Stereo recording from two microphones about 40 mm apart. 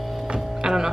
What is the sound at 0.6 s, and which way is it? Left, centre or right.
Music, centre.